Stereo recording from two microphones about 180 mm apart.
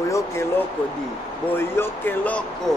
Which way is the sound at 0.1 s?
15° left (ahead or behind).